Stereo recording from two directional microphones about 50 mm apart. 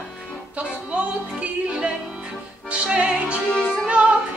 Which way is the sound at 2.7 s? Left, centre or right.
Right.